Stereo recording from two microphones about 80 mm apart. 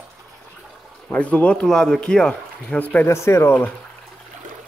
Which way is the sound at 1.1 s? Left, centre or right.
Centre.